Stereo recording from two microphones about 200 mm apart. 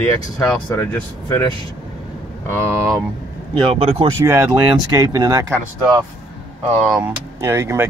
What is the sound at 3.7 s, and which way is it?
Speech, 30° right (ahead or behind).